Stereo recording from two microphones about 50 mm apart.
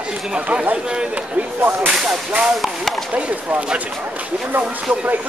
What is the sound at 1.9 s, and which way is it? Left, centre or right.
Whip, centre.